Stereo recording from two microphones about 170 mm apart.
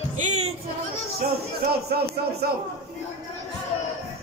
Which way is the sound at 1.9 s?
70° right (ahead or behind).